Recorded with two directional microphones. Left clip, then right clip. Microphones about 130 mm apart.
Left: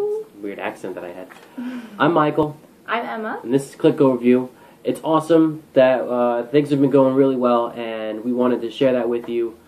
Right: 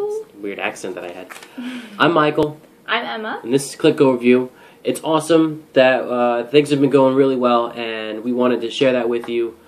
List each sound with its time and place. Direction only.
0.5 s speech: 20° right (ahead or behind)
2.4 s a woman's voice: 5° left (ahead or behind)
3.4 s speech: 15° right (ahead or behind)